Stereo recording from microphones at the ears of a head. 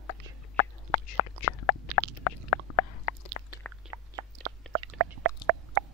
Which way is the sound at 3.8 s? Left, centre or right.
Right.